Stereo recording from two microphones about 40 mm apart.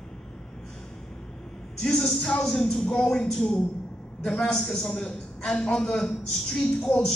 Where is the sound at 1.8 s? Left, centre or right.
Centre.